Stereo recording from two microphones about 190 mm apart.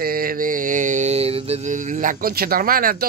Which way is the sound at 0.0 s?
50° right (ahead or behind).